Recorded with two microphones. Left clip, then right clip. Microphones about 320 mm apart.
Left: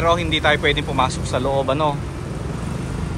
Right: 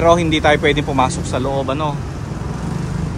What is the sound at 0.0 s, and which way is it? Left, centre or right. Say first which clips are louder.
Speech: right 5 dB; centre.